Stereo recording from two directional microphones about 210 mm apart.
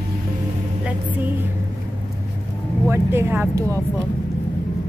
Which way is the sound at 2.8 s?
10° right (ahead or behind).